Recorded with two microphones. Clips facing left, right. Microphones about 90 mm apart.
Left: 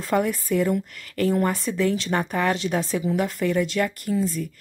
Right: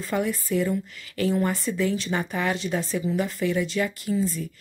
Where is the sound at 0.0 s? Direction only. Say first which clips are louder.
Left 3 dB; 65° left (ahead or behind).